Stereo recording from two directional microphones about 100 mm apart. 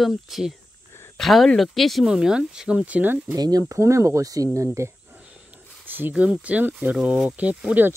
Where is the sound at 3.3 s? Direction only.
40° right (ahead or behind).